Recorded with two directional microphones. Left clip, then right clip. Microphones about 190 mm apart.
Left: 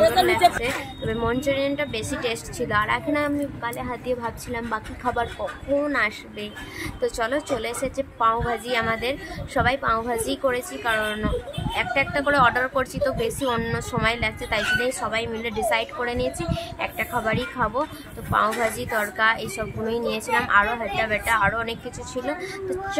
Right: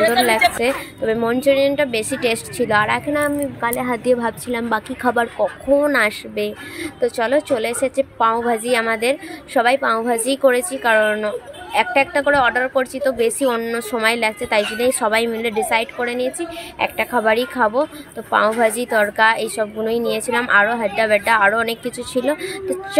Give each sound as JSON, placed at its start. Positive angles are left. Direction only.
{"t": 0.5, "sound": "a woman's voice", "side_deg": -25}
{"t": 3.6, "sound": "a woman's voice", "side_deg": -30}